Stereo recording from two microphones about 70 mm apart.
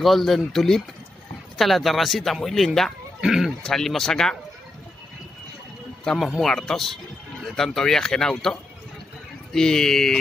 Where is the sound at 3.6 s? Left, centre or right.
Centre.